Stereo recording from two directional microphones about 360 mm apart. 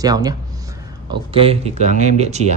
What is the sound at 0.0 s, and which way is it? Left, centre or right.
Speech, centre.